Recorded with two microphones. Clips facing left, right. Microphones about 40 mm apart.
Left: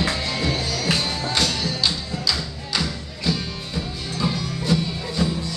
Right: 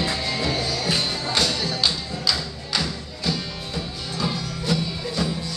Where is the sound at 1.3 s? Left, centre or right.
Centre.